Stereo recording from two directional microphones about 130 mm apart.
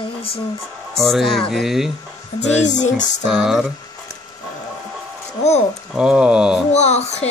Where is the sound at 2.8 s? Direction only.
70° left (ahead or behind).